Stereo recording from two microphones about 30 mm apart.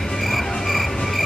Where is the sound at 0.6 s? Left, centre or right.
Centre.